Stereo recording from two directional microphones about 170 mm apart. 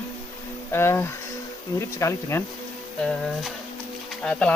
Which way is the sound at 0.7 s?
15° left (ahead or behind).